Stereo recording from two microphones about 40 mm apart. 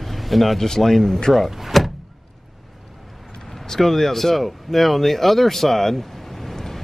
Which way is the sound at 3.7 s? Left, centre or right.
Centre.